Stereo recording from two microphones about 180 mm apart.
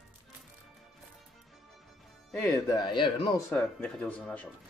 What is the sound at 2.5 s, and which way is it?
Speech, 20° left (ahead or behind).